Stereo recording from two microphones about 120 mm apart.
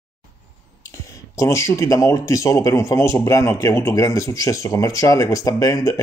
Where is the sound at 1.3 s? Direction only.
25° left (ahead or behind).